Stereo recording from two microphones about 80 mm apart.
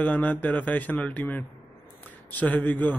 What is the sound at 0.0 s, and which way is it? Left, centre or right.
Speech, centre.